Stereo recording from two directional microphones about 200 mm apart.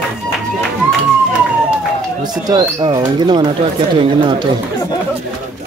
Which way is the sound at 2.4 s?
20° right (ahead or behind).